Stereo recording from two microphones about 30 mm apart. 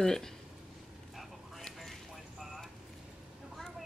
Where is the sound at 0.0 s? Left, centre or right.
Centre.